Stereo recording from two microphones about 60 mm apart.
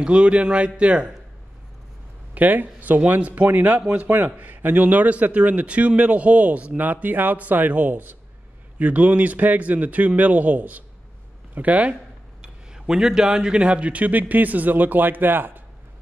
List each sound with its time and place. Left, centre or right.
0.0 s speech: centre
2.3 s speech: right
12.4 s speech: centre; by 15.6 s right